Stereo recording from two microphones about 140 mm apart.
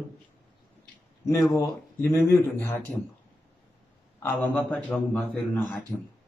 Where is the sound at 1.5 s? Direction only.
20° left (ahead or behind).